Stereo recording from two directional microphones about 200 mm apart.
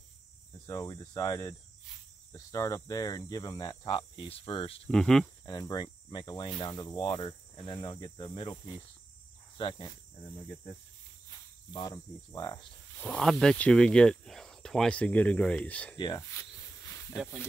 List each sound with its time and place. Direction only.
0.7 s cricket: 20° left (ahead or behind)
4.8 s speech: 5° left (ahead or behind)
5.4 s cricket: 20° left (ahead or behind)
11.7 s cricket: 20° left (ahead or behind)
13.0 s speech: 5° left (ahead or behind)
16.0 s snake: 20° left (ahead or behind)
17.1 s speech: 5° right (ahead or behind)